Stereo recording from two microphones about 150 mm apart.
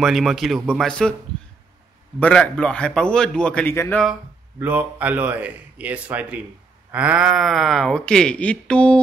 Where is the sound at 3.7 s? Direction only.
20° left (ahead or behind).